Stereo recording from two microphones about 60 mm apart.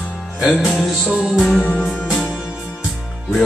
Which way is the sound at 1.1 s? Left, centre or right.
Centre.